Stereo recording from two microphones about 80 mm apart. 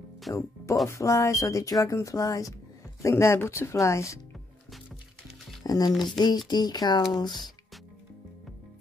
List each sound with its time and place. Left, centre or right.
0.3 s speech: left
5.6 s speech: left